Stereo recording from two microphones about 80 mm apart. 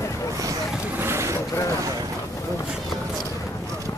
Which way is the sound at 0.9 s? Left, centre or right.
Right.